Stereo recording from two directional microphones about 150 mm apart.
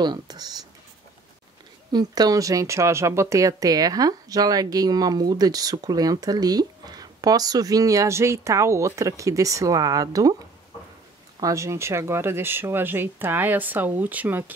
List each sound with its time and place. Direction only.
0.0 s speech: 30° right (ahead or behind)
1.9 s speech: 25° right (ahead or behind)
11.3 s speech: 20° right (ahead or behind)